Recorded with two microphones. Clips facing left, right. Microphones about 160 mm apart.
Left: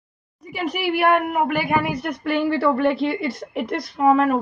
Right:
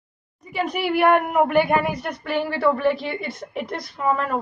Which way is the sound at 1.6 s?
5° left (ahead or behind).